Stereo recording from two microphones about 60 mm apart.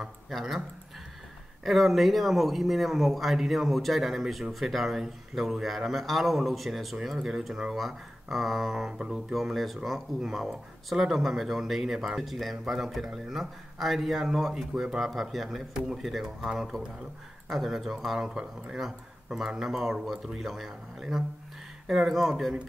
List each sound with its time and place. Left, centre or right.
0.3 s speech: centre
18.2 s speech: centre
18.8 s speech: centre